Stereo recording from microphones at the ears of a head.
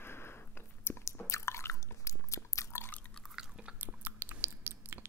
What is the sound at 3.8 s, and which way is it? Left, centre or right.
Chewing, right.